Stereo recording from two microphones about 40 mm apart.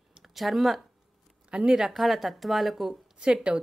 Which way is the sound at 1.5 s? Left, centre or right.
Right.